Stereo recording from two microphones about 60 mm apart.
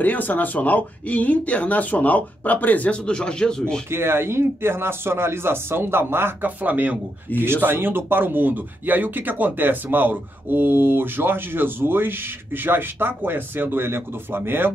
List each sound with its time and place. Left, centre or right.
0.0 s speech: left
3.1 s speech: centre
3.9 s speech: right
7.3 s speech: left
7.6 s speech: right